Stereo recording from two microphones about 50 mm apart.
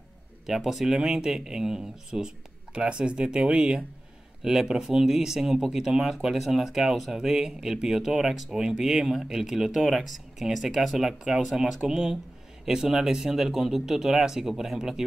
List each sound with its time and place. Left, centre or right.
0.5 s speech: centre